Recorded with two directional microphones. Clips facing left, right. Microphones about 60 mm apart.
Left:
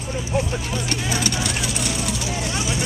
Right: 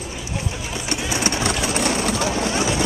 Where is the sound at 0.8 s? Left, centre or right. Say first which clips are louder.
Right 3 dB; right.